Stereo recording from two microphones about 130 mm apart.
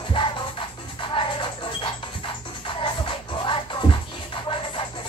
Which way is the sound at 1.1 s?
40° left (ahead or behind).